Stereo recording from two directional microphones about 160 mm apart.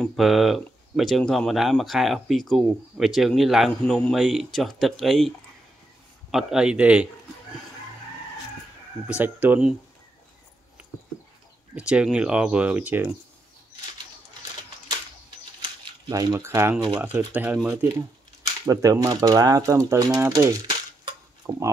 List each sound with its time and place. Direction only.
0.0 s speech: centre (ahead or behind)
6.3 s speech: 5° right (ahead or behind)
9.2 s speech: 10° right (ahead or behind)
11.7 s speech: 5° right (ahead or behind)
16.1 s speech: 25° right (ahead or behind)